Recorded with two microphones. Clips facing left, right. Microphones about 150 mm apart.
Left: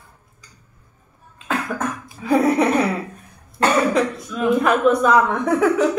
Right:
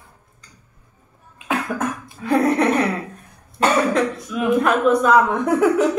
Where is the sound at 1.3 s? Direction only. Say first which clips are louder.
Right 1 dB; 15° right (ahead or behind).